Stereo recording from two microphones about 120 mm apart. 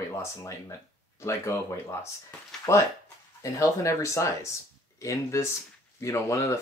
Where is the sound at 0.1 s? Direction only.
25° left (ahead or behind).